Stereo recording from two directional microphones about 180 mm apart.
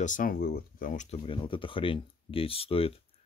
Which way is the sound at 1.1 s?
30° left (ahead or behind).